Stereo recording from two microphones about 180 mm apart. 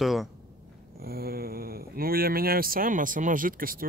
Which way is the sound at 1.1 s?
55° right (ahead or behind).